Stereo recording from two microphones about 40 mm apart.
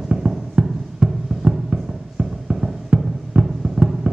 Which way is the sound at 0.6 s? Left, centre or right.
Right.